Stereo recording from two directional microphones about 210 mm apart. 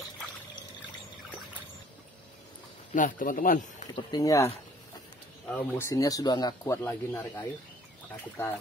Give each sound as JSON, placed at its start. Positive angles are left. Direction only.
{"t": 2.9, "sound": "speech", "side_deg": 40}
{"t": 3.9, "sound": "speech", "side_deg": 20}
{"t": 5.5, "sound": "speech", "side_deg": 10}